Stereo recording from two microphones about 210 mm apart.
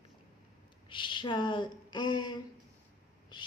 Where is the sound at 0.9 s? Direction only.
20° left (ahead or behind).